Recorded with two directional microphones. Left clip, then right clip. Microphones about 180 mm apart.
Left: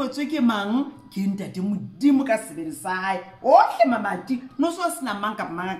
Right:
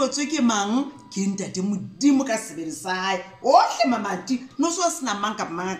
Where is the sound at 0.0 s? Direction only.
50° left (ahead or behind).